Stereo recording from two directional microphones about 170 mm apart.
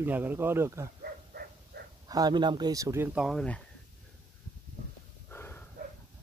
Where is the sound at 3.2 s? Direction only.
5° left (ahead or behind).